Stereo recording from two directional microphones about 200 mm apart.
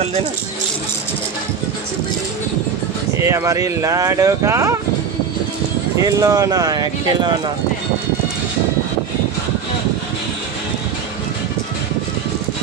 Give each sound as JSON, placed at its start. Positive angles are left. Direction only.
{"t": 3.2, "sound": "speech", "side_deg": -15}
{"t": 5.9, "sound": "speech", "side_deg": -15}